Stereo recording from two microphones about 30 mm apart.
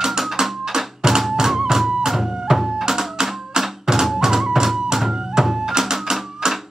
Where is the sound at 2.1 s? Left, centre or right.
Centre.